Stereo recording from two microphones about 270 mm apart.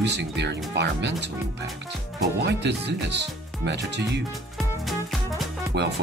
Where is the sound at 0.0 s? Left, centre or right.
Right.